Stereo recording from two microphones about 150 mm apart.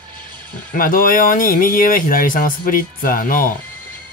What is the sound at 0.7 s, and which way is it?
Speech, 70° left (ahead or behind).